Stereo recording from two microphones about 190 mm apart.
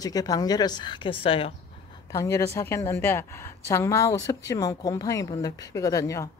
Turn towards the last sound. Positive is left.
turn(degrees=15)  # may be behind; listen again after turning